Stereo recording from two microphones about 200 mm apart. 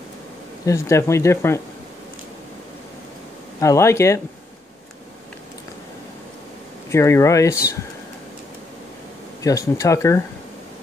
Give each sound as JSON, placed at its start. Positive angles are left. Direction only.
{"t": 0.7, "sound": "speech", "side_deg": 15}
{"t": 3.5, "sound": "speech", "side_deg": 15}
{"t": 6.9, "sound": "speech", "side_deg": 15}
{"t": 9.4, "sound": "speech", "side_deg": 15}